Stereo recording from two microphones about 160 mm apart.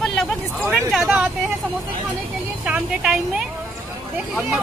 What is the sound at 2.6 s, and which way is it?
A woman's voice, 5° right (ahead or behind).